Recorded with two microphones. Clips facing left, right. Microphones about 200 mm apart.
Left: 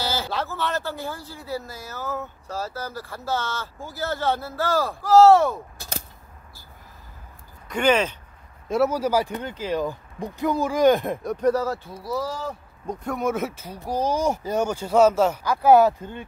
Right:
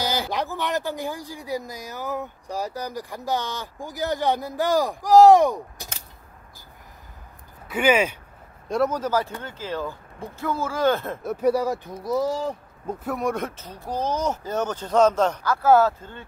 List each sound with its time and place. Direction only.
0.0 s speech: 15° right (ahead or behind)
7.6 s speech: 5° right (ahead or behind)
8.6 s speech: 5° left (ahead or behind)
11.2 s speech: 10° right (ahead or behind)
12.8 s speech: 5° right (ahead or behind); by 16.3 s 15° left (ahead or behind)